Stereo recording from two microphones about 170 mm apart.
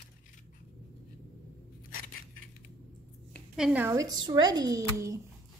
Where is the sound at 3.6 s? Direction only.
10° right (ahead or behind).